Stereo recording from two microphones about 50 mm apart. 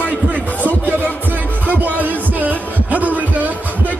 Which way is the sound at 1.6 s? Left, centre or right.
Right.